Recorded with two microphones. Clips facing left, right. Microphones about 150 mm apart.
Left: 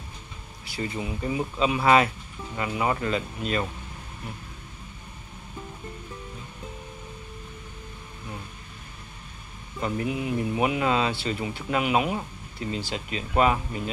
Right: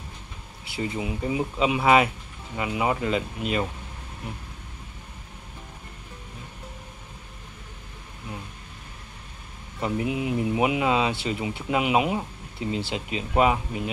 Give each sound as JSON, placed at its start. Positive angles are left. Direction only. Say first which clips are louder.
{"t": 0.7, "sound": "speech", "louder": "right 2 dB", "side_deg": -20}
{"t": 9.8, "sound": "speech", "louder": "right 1 dB", "side_deg": -15}